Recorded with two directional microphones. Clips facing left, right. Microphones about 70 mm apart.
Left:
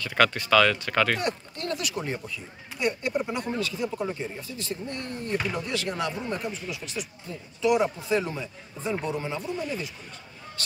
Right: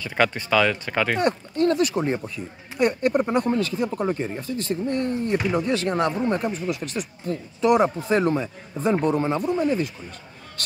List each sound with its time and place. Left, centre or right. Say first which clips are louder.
0.0 s speech: right 1 dB; centre
1.2 s speech: right 10 dB; right
2.8 s speech: right 7 dB; right
4.8 s speech: right 9 dB; right